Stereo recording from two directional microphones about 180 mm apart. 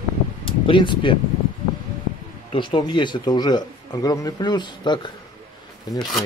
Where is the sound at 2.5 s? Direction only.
25° left (ahead or behind).